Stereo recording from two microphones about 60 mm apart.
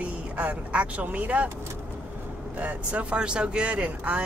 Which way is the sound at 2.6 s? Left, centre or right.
Right.